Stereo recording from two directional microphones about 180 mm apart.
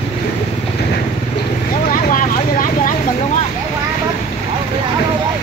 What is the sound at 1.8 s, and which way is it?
Vehicle, 50° left (ahead or behind).